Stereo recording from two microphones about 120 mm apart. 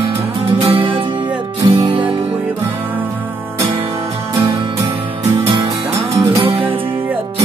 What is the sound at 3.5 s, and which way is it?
Music, 25° right (ahead or behind).